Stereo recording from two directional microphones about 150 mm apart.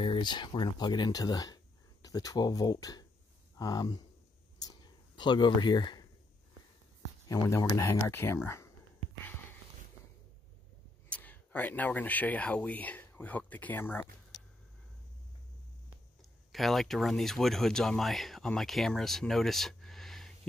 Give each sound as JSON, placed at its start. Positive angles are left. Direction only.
{"t": 0.0, "sound": "speech", "side_deg": 30}
{"t": 4.6, "sound": "a sound", "side_deg": 30}
{"t": 7.2, "sound": "speech", "side_deg": 20}
{"t": 11.1, "sound": "speech", "side_deg": 10}
{"t": 16.2, "sound": "speech", "side_deg": 0}